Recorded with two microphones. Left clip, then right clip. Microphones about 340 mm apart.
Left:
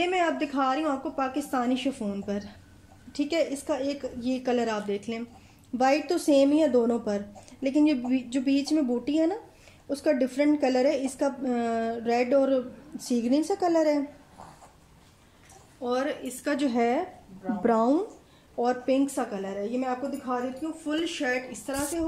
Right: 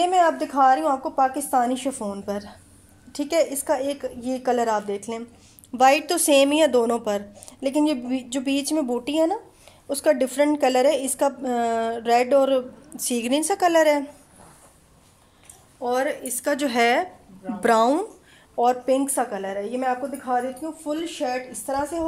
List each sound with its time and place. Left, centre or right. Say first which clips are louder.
0.1 s a woman's voice: right 7 dB; centre
15.8 s a woman's voice: right 5 dB; right